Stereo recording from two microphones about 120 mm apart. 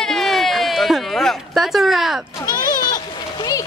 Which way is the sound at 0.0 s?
Centre (ahead or behind).